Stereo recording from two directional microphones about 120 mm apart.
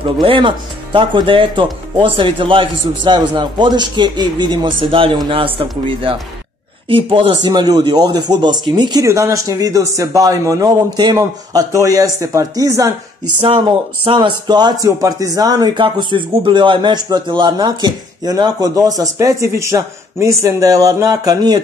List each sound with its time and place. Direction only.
0.2 s speech: 45° right (ahead or behind)
9.0 s a man's voice: 25° right (ahead or behind)
13.4 s speech: 50° right (ahead or behind); by 21.5 s 30° right (ahead or behind)